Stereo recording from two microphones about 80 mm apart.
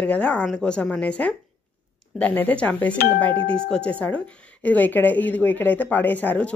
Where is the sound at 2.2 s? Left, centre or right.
Centre.